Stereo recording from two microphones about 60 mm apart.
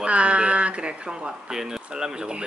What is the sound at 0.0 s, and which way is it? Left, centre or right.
Speech, centre.